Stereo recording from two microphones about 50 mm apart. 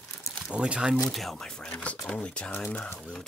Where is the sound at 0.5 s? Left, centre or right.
Right.